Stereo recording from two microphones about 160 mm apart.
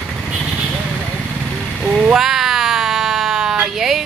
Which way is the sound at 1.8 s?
5° right (ahead or behind).